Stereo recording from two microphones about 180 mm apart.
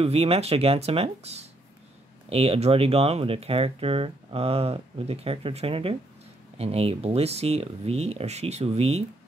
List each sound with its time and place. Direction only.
0.0 s speech: 35° right (ahead or behind)